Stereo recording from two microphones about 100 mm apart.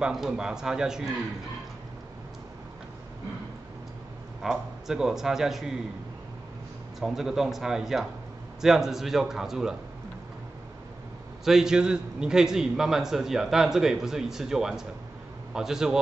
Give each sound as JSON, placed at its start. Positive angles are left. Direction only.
{"t": 0.0, "sound": "a man's voice", "side_deg": -5}
{"t": 4.4, "sound": "a man's voice", "side_deg": -5}
{"t": 7.0, "sound": "a man's voice", "side_deg": -5}
{"t": 11.4, "sound": "a man's voice", "side_deg": -5}